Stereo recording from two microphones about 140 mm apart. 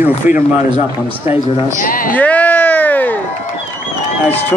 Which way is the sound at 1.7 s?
80° left.